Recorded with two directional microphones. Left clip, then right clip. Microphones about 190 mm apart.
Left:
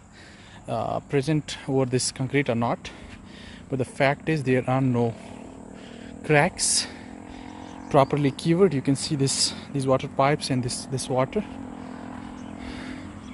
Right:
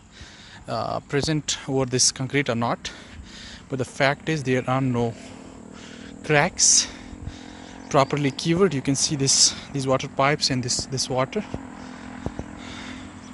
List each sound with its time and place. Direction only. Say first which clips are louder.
0.7 s speech: even; centre (ahead or behind)
6.2 s speech: right 2 dB; 5° left (ahead or behind)
7.9 s speech: even; 5° left (ahead or behind)
12.6 s vehicle: left 2 dB; 10° left (ahead or behind)